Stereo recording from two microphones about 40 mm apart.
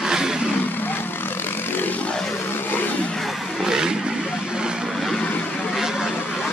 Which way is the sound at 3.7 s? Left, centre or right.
Centre.